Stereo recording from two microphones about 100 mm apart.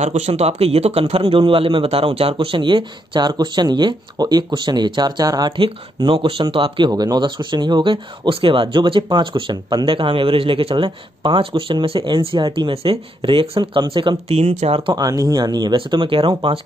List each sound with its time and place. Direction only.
0.2 s speech: 90° right; by 5.5 s 40° right (ahead or behind)
5.6 s speech: 55° right (ahead or behind)
6.9 s speech: 40° right (ahead or behind)
12.7 s speech: 75° right (ahead or behind); by 14.1 s 55° right (ahead or behind)
14.3 s speech: 75° right (ahead or behind)
15.0 s speech: 35° right (ahead or behind)
15.7 s speech: 55° right (ahead or behind)